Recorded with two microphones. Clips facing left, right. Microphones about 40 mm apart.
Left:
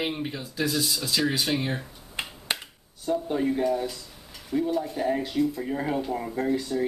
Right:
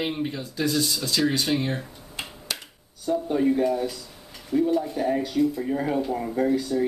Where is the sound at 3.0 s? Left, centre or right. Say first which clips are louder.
Right 3 dB; centre.